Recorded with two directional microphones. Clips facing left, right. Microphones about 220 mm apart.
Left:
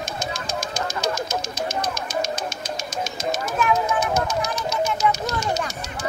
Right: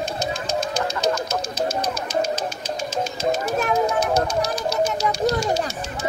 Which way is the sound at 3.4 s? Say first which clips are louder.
Left 1 dB; 35° right (ahead or behind).